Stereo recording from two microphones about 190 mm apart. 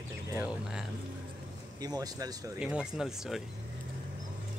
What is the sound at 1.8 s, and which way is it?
Speech, 20° right (ahead or behind).